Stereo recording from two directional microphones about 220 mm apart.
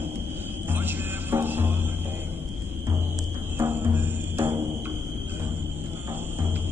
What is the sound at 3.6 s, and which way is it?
Music, 10° right (ahead or behind).